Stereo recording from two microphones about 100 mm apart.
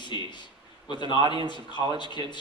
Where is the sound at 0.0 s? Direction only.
50° left (ahead or behind).